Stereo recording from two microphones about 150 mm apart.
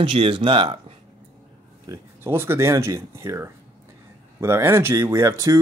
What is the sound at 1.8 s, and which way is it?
Speech, 20° right (ahead or behind).